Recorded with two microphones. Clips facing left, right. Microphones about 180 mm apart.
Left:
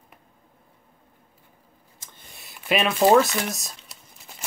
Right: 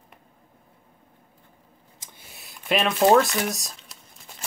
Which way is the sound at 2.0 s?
10° right (ahead or behind).